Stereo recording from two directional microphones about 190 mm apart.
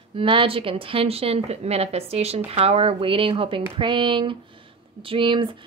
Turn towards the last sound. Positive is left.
turn(degrees=-25)  # may be behind; listen again after turning